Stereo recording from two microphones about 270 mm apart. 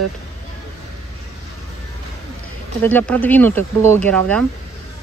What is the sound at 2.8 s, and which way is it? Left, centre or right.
Speech, centre.